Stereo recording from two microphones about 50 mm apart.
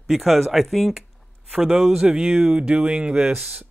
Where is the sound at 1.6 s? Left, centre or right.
Centre.